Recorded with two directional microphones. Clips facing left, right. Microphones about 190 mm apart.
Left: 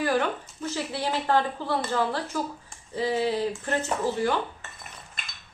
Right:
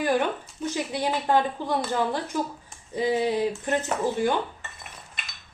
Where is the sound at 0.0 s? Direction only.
15° right (ahead or behind).